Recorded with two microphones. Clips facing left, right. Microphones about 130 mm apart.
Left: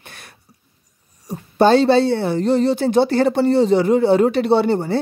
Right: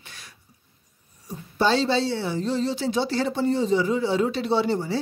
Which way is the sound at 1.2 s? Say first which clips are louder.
Left 8 dB; 55° left (ahead or behind).